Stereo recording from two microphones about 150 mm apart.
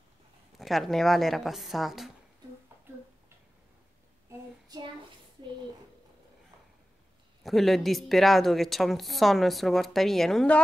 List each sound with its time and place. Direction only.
0.6 s a woman's voice: centre (ahead or behind)
4.3 s child singing: 25° right (ahead or behind)
7.4 s a woman's voice: centre (ahead or behind)